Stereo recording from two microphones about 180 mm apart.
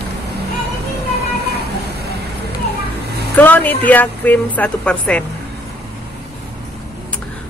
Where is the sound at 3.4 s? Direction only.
10° left (ahead or behind).